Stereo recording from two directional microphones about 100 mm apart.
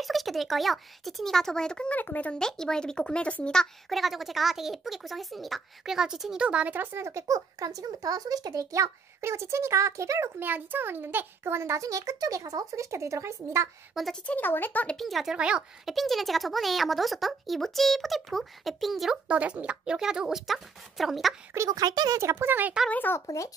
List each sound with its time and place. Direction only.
0.0 s speech: centre (ahead or behind); by 13.7 s 30° right (ahead or behind)
14.2 s speech: 15° left (ahead or behind)
15.0 s a child's voice: centre (ahead or behind)
19.2 s speech: 10° right (ahead or behind)
21.6 s speech: 40° right (ahead or behind)
22.2 s speech: 25° right (ahead or behind)
22.8 s speech: 20° left (ahead or behind)
23.2 s speech: 30° left (ahead or behind)